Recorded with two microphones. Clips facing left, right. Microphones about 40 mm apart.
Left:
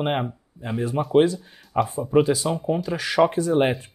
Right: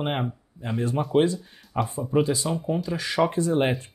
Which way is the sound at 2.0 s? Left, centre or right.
Centre.